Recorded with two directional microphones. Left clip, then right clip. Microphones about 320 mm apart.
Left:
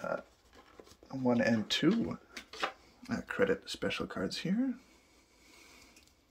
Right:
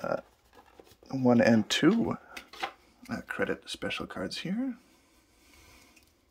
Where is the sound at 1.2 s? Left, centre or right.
Centre.